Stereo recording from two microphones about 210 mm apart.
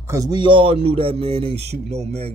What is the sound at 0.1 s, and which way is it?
A man's voice, 20° right (ahead or behind).